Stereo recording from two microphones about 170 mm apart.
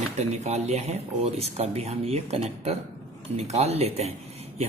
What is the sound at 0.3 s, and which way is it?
Speech, 40° right (ahead or behind).